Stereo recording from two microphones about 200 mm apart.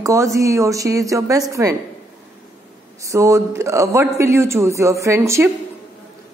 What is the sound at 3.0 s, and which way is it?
Speech, 15° right (ahead or behind).